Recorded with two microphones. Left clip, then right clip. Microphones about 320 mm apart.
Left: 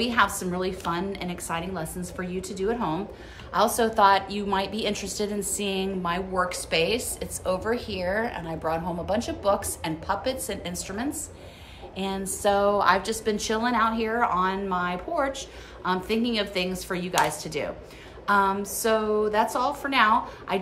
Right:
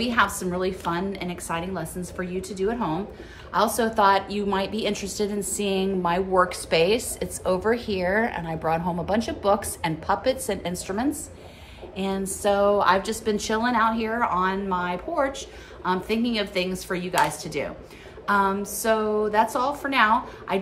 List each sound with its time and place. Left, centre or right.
0.0 s a woman's voice: centre